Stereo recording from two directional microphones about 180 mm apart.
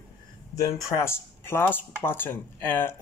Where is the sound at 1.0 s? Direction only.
15° left (ahead or behind).